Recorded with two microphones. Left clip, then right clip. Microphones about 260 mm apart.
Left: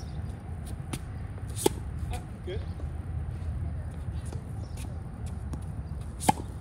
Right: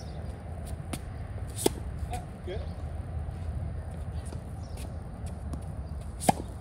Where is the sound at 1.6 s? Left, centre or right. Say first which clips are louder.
Left 1 dB; centre.